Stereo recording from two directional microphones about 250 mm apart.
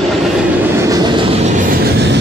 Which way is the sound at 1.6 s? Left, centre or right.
Right.